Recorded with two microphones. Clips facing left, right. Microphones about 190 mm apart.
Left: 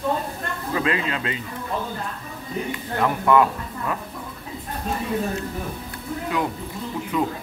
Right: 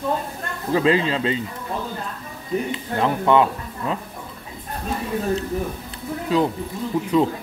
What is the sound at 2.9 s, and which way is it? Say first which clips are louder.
Speech: right 1 dB; 25° right (ahead or behind).